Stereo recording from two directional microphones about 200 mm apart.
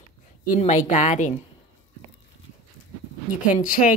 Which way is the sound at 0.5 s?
35° left (ahead or behind).